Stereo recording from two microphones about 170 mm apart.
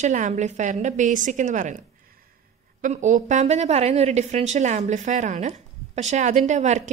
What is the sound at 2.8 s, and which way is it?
Speech, 45° right (ahead or behind).